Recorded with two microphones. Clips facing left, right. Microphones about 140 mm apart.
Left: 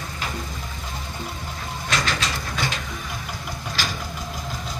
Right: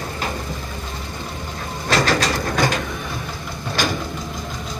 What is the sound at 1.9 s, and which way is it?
Train, 40° right (ahead or behind).